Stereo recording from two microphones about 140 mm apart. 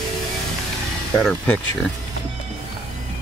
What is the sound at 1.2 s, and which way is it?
Speech, 10° left (ahead or behind).